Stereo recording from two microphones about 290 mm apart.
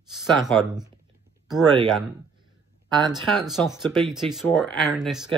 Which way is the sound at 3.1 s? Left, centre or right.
Centre.